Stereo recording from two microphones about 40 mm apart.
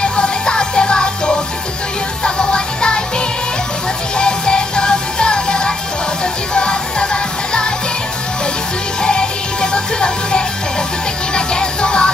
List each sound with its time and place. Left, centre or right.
0.0 s music: left
4.2 s music: left
9.0 s music: left